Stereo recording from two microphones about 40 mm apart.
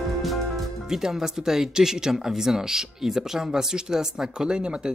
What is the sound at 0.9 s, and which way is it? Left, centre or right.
Speech, centre.